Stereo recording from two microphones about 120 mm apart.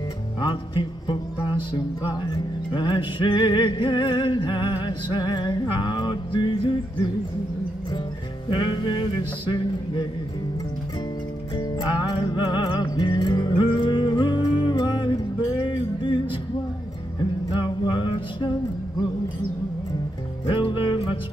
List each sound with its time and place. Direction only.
0.4 s music: 40° left (ahead or behind)
8.5 s music: 40° left (ahead or behind)
11.5 s music: 35° left (ahead or behind)
17.5 s music: 40° left (ahead or behind)
20.4 s music: 45° left (ahead or behind)